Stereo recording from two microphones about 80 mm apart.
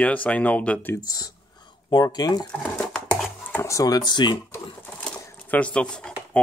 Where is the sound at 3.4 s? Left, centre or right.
Left.